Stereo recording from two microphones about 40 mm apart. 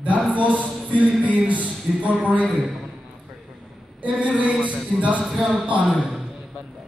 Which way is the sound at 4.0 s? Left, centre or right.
Right.